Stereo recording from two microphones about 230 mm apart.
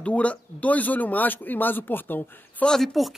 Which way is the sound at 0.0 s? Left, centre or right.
Centre.